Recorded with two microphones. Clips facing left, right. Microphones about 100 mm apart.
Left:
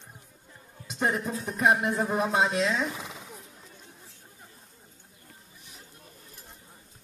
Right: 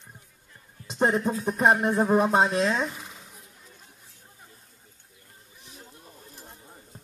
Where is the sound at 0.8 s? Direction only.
30° right (ahead or behind).